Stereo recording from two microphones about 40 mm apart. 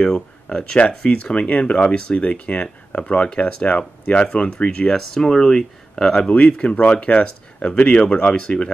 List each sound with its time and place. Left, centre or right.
0.0 s a sound: centre
1.3 s speech: left
4.9 s speech: centre
6.2 s speech: left